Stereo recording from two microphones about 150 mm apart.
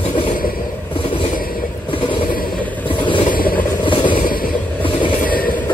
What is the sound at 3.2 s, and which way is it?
Vehicle, 70° left (ahead or behind).